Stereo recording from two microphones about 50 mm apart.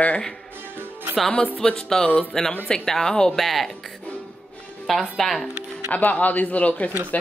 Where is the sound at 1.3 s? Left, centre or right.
Centre.